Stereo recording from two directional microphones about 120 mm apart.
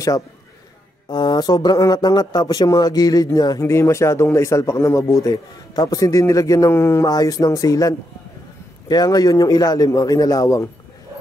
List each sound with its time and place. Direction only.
1.0 s a man's voice: 35° left (ahead or behind)